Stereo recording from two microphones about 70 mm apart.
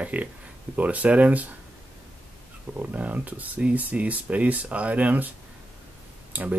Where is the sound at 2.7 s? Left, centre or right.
Right.